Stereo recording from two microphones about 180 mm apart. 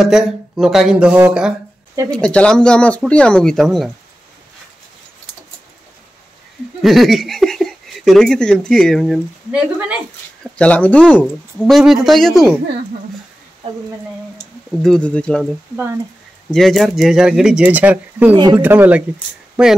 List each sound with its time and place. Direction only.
0.0 s speech: centre (ahead or behind)
2.0 s speech: 5° left (ahead or behind)
6.8 s speech: centre (ahead or behind)
10.4 s speech: 5° left (ahead or behind)
14.7 s speech: 5° left (ahead or behind)
16.5 s speech: centre (ahead or behind)
18.3 s speech: 25° right (ahead or behind)
18.6 s speech: 10° right (ahead or behind)